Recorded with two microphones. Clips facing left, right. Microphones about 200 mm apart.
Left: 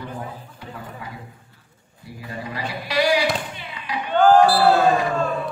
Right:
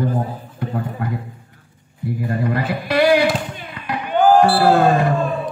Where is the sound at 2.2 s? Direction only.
55° right (ahead or behind).